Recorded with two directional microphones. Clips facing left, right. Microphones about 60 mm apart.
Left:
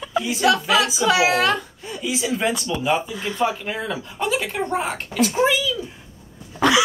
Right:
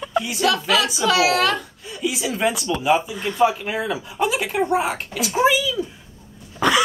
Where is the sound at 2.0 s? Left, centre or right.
Centre.